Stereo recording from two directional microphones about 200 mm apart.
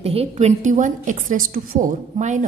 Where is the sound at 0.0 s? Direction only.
30° right (ahead or behind).